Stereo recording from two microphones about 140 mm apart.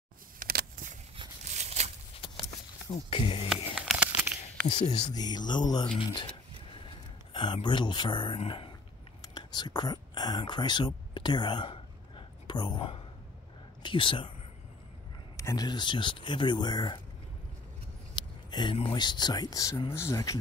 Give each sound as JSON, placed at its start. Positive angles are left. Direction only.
{"t": 0.4, "sound": "a sound", "side_deg": -85}
{"t": 1.5, "sound": "a sound", "side_deg": -55}
{"t": 2.1, "sound": "horse", "side_deg": 40}
{"t": 2.9, "sound": "speech", "side_deg": 40}
{"t": 3.4, "sound": "a sound", "side_deg": -5}
{"t": 5.1, "sound": "speech", "side_deg": 30}
{"t": 7.6, "sound": "speech", "side_deg": 35}
{"t": 15.3, "sound": "speech", "side_deg": 25}
{"t": 18.1, "sound": "speech", "side_deg": 30}